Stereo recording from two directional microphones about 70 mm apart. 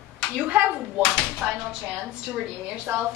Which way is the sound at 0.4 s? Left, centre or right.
Right.